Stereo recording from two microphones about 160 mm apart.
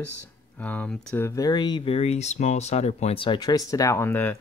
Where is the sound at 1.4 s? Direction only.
25° left (ahead or behind).